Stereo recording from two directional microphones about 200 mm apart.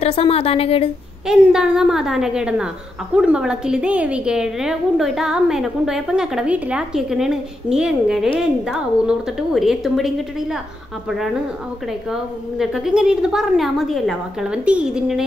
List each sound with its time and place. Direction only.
0.0 s a woman's voice: 30° left (ahead or behind)
1.2 s a woman's voice: 5° right (ahead or behind)
12.1 s a woman's voice: centre (ahead or behind)